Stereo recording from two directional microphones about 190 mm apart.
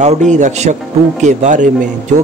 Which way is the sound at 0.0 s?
40° right (ahead or behind).